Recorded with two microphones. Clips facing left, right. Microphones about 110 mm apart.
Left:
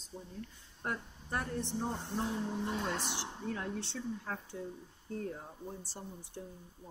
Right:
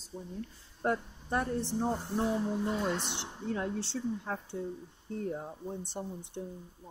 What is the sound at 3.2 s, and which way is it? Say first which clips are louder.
Speech: right 4 dB; 25° right (ahead or behind).